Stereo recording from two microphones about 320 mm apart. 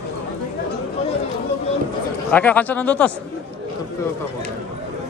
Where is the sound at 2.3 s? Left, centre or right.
Centre.